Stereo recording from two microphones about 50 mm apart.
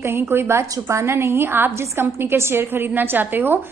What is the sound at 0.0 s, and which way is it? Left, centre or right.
A woman's voice, right.